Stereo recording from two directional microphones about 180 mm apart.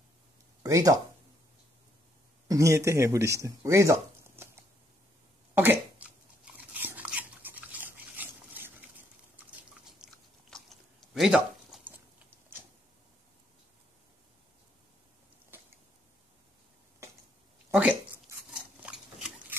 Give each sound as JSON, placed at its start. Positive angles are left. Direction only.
{"t": 0.6, "sound": "speech", "side_deg": -20}
{"t": 2.4, "sound": "speech", "side_deg": -20}
{"t": 5.5, "sound": "chewing", "side_deg": -10}
{"t": 9.8, "sound": "chewing", "side_deg": 0}
{"t": 18.5, "sound": "a sound", "side_deg": -5}